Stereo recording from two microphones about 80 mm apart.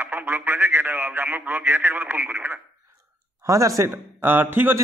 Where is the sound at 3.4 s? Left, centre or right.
Right.